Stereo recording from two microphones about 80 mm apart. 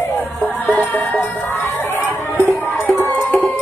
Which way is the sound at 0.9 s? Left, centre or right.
Left.